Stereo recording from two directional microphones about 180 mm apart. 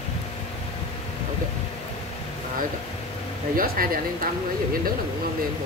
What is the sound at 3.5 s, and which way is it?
Speech, 55° right (ahead or behind).